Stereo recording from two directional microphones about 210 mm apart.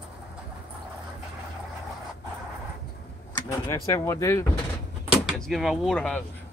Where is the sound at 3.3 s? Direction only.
15° left (ahead or behind).